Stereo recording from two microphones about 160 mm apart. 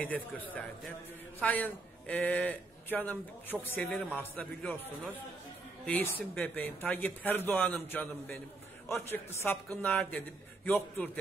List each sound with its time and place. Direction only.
0.0 s a man's voice: 10° left (ahead or behind)
5.9 s a man's voice: 10° left (ahead or behind)